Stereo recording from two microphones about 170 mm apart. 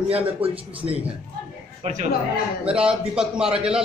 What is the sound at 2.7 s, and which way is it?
Speech, 5° right (ahead or behind).